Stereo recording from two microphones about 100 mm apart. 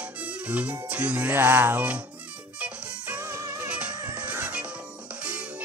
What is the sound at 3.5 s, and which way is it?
Music, 15° right (ahead or behind).